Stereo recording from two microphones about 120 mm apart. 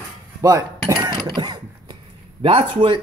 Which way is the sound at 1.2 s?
35° right (ahead or behind).